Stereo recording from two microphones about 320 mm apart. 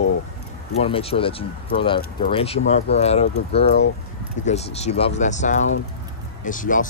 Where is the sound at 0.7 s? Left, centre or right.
Centre.